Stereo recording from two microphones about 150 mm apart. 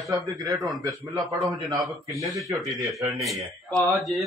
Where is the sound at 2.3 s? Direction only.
Centre (ahead or behind).